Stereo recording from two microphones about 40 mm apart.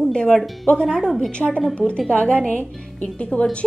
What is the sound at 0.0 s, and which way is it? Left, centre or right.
Music, left.